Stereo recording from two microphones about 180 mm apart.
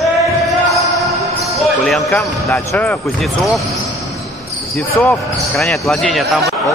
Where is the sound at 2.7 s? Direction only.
15° left (ahead or behind).